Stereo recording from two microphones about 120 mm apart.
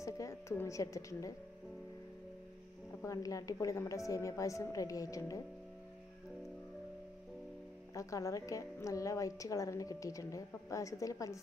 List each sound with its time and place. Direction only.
0.0 s a woman's voice: 25° left (ahead or behind)
3.0 s a woman's voice: 30° left (ahead or behind)
7.9 s a woman's voice: 25° left (ahead or behind)